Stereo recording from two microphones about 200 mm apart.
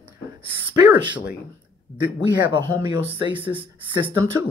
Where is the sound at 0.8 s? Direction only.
20° right (ahead or behind).